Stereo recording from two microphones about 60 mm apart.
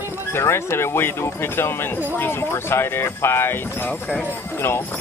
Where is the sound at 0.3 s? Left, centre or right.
Left.